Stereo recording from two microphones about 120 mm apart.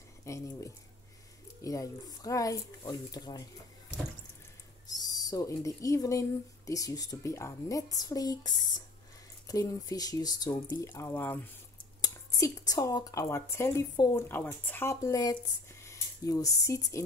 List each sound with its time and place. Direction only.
0.2 s speech: 25° left (ahead or behind)
4.8 s speech: 30° left (ahead or behind)
10.9 s speech: 20° left (ahead or behind)
12.0 s speech: 30° left (ahead or behind)